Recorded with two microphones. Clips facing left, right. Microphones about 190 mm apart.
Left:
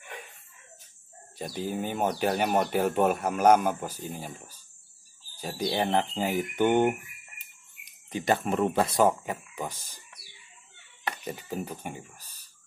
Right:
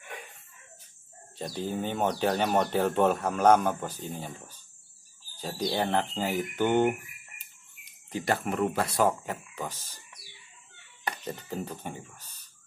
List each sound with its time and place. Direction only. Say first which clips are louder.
1.4 s speech: even; 10° left (ahead or behind)
11.2 s speech: left 2 dB; 10° left (ahead or behind)